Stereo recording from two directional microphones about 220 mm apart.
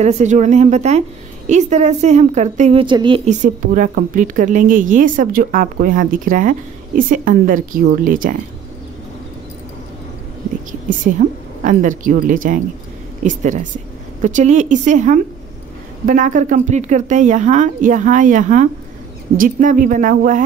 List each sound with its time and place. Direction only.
0.0 s a woman's voice: 30° right (ahead or behind)
3.3 s a woman's voice: 35° right (ahead or behind)
10.7 s a woman's voice: 35° right (ahead or behind)